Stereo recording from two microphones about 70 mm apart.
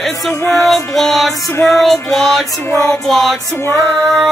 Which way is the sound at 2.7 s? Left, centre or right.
Left.